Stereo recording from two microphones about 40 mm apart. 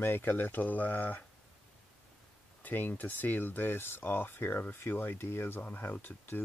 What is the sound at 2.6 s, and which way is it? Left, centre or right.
Speech, left.